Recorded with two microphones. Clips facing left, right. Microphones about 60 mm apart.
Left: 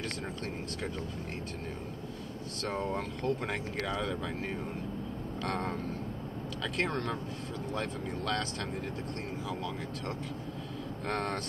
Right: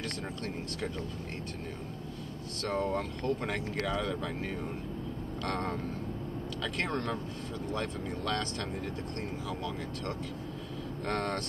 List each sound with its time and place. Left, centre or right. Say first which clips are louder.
2.6 s speech: right 2 dB; centre
5.4 s speech: even; centre
11.1 s speech: right 1 dB; centre